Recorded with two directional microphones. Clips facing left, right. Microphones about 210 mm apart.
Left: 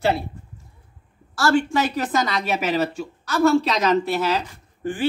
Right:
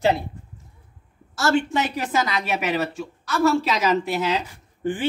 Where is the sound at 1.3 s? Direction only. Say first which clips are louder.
Left 2 dB; 20° right (ahead or behind).